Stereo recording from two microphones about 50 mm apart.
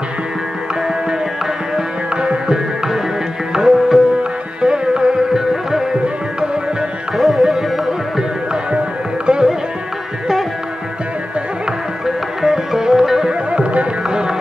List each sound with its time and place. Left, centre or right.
2.2 s music: centre
7.2 s music: centre
9.2 s music: centre
12.4 s music: centre
13.3 s music: right